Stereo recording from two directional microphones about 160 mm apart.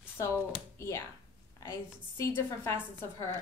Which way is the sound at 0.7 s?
20° left (ahead or behind).